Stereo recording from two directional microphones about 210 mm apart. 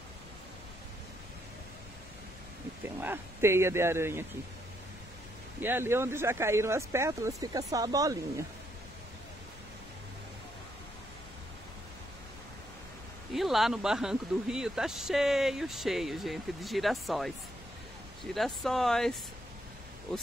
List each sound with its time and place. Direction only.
2.8 s speech: 10° right (ahead or behind)
5.6 s speech: 10° right (ahead or behind)
13.3 s speech: centre (ahead or behind)
18.3 s speech: centre (ahead or behind)